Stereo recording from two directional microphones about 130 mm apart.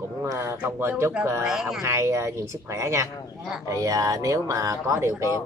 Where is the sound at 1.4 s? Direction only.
5° right (ahead or behind).